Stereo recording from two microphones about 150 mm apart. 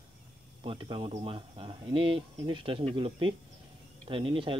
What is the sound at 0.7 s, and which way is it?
Speech, 35° right (ahead or behind).